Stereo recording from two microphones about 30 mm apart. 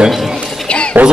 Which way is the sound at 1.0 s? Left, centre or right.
Right.